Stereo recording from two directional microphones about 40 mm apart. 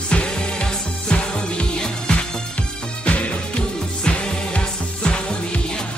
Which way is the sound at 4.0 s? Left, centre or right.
Left.